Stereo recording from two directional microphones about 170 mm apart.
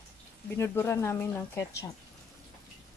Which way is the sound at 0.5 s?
15° left (ahead or behind).